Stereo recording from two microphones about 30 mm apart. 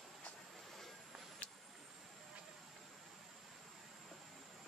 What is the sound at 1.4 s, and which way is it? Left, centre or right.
Vehicle, left.